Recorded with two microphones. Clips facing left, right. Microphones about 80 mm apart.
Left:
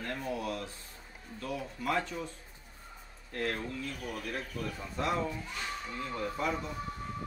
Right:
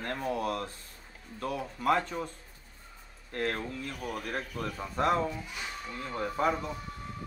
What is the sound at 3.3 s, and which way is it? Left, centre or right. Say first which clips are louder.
Speech: right 2 dB; right.